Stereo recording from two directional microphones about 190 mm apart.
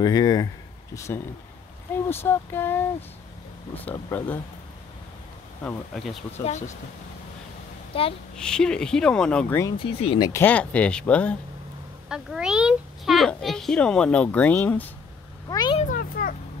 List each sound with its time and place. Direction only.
0.0 s speech: 20° left (ahead or behind)
5.6 s a child's voice: 5° left (ahead or behind)
6.3 s speech: 35° left (ahead or behind)
7.9 s speech: 30° left (ahead or behind)
8.4 s a child's voice: 5° left (ahead or behind)
9.8 s speech: 30° left (ahead or behind)
10.4 s a child's voice: 5° left (ahead or behind)
15.5 s speech: 20° left (ahead or behind)
15.8 s a sound: 45° left (ahead or behind)